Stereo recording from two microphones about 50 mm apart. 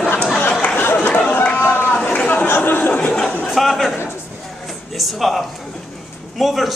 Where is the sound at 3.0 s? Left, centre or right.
Centre.